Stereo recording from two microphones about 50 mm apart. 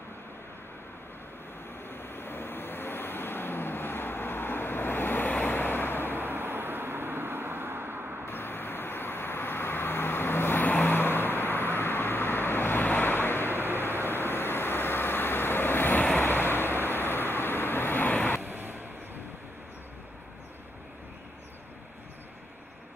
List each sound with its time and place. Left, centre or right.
1.9 s vehicle: left
6.1 s vehicle: right
8.3 s vehicle: left
18.4 s vehicle: right